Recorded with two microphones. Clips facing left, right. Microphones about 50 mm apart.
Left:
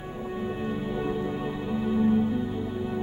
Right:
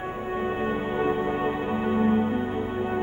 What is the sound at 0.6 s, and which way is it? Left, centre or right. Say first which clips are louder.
Music: right 4 dB; right.